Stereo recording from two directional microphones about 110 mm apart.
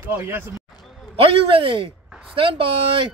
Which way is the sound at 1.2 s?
55° right (ahead or behind).